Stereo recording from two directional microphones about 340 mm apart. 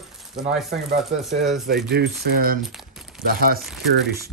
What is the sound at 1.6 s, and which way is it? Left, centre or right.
Speech, right.